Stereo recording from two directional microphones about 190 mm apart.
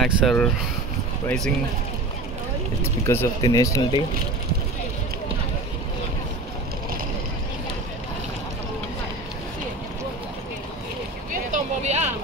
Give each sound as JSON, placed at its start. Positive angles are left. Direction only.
{"t": 0.0, "sound": "speech", "side_deg": 0}
{"t": 2.8, "sound": "speech", "side_deg": 15}
{"t": 11.5, "sound": "a sound", "side_deg": -35}